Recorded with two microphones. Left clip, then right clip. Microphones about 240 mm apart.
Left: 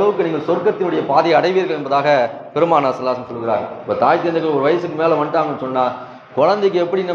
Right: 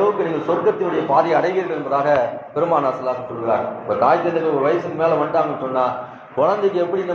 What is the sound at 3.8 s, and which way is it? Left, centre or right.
A man's voice, left.